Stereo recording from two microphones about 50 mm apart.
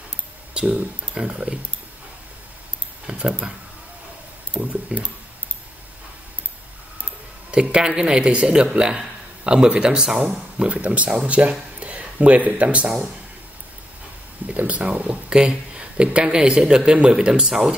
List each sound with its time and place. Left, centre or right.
0.6 s speech: right
1.1 s speech: centre
3.1 s speech: centre
4.6 s speech: right
7.5 s speech: centre
14.7 s speech: right; by 17.7 s centre